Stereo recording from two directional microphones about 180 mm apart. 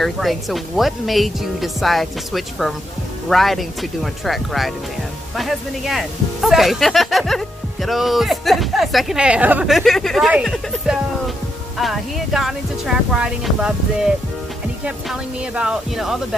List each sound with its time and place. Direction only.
0.0 s speech: centre (ahead or behind)